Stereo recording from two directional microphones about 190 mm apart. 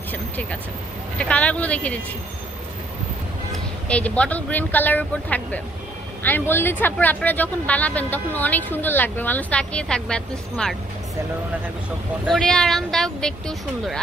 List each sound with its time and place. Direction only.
0.1 s speech: 5° left (ahead or behind)
3.9 s speech: 5° left (ahead or behind)
12.3 s speech: centre (ahead or behind)